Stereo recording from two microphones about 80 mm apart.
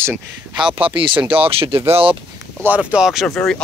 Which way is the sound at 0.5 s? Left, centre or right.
Centre.